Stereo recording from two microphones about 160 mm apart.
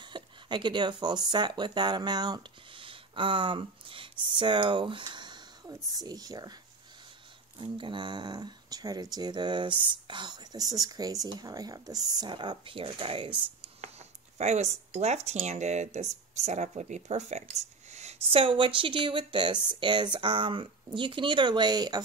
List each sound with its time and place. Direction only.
0.0 s speech: 30° right (ahead or behind)
7.5 s speech: 30° right (ahead or behind)
13.7 s speech: 45° right (ahead or behind); by 22.0 s 25° right (ahead or behind)